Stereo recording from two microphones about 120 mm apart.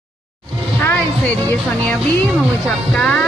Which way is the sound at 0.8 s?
15° left (ahead or behind).